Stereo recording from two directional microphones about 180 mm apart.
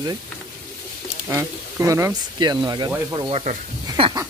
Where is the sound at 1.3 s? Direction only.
15° right (ahead or behind).